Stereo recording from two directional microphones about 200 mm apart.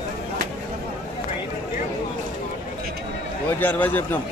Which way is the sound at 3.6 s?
10° left (ahead or behind).